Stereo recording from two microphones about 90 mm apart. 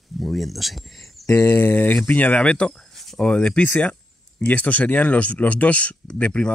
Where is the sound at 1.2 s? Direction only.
25° left (ahead or behind).